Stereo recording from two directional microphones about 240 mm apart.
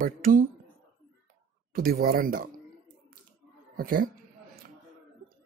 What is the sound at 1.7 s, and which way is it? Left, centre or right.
Speech, right.